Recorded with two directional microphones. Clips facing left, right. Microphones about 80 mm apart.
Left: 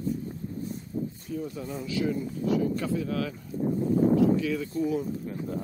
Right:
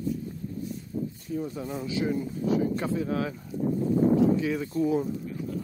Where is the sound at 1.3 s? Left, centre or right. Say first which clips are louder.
Right 2 dB; right.